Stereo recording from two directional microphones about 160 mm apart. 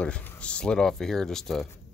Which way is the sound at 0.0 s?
5° left (ahead or behind).